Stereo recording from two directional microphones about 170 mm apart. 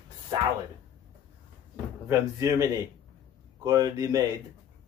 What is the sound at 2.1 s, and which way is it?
Speech, 15° right (ahead or behind).